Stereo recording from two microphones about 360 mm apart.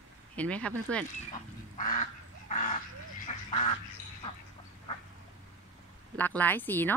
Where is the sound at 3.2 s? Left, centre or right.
Centre.